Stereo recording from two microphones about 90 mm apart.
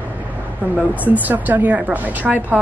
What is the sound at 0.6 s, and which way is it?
A woman's voice, 20° right (ahead or behind).